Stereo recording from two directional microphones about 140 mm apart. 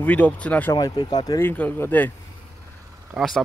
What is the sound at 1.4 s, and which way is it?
Speech, 15° left (ahead or behind).